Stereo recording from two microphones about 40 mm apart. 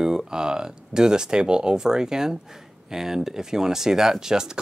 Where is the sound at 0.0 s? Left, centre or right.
Centre.